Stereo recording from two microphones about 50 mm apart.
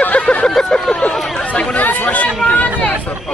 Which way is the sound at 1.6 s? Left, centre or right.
Left.